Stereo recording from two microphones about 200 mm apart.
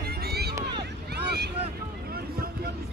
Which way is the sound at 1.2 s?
55° right (ahead or behind).